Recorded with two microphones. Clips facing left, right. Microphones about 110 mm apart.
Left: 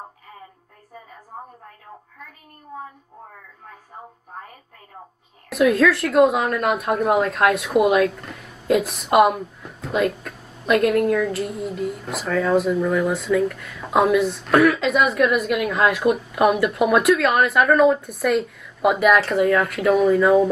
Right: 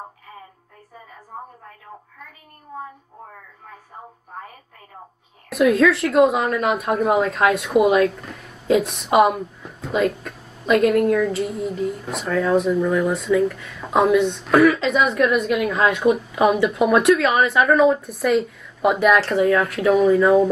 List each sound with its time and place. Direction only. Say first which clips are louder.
5.5 s a woman's voice: right 1 dB; centre (ahead or behind)